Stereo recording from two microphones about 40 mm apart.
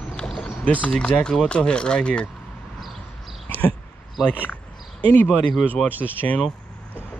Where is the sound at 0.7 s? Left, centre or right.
Left.